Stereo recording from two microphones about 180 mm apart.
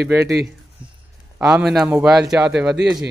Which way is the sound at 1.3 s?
10° right (ahead or behind).